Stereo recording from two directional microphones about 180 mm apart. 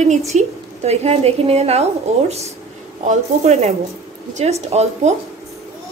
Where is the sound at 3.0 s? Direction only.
35° right (ahead or behind).